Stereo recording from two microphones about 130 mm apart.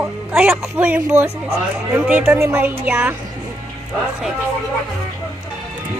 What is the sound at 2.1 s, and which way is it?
A woman's voice, 10° right (ahead or behind).